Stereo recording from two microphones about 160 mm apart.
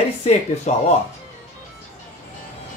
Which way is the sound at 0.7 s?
50° left (ahead or behind).